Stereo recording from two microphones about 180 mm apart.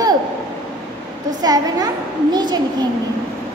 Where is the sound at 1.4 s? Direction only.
20° right (ahead or behind).